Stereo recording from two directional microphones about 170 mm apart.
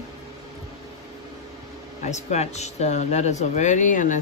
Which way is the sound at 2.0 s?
40° left (ahead or behind).